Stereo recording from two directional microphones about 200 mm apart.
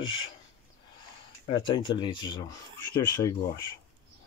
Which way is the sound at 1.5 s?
25° left (ahead or behind).